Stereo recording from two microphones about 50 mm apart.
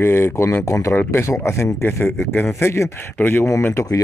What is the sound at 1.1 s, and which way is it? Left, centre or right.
Speech, left.